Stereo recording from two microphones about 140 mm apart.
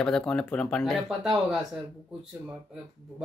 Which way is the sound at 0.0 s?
5° left (ahead or behind).